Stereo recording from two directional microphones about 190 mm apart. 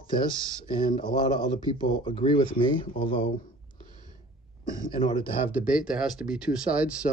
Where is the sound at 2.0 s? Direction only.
25° left (ahead or behind).